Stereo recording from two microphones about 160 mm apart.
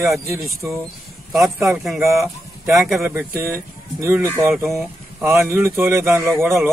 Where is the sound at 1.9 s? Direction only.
15° right (ahead or behind).